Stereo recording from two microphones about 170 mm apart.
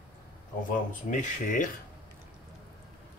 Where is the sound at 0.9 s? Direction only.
45° left (ahead or behind).